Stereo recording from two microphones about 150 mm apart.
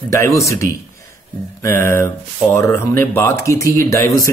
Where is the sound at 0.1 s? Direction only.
20° left (ahead or behind).